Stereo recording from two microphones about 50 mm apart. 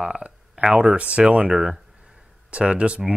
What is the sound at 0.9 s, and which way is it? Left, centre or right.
Speech, right.